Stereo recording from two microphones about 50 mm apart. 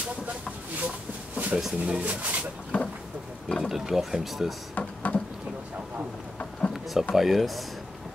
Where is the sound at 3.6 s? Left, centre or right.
Centre.